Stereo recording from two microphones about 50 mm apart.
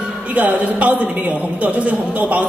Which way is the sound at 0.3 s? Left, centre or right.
Right.